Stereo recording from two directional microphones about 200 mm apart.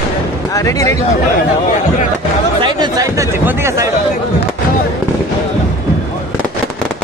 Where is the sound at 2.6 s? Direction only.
20° right (ahead or behind).